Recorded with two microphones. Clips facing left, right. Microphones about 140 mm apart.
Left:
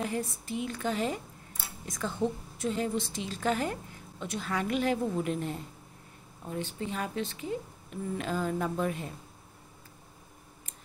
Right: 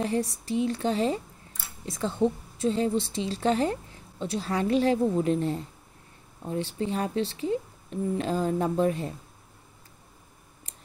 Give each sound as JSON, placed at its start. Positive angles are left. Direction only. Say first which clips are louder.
{"t": 0.0, "sound": "a woman's voice", "louder": "right 5 dB", "side_deg": -35}